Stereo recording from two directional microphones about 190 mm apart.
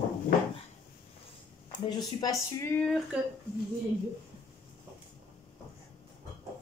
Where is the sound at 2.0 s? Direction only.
20° left (ahead or behind).